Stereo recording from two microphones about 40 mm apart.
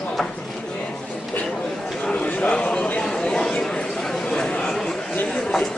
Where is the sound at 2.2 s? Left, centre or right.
Left.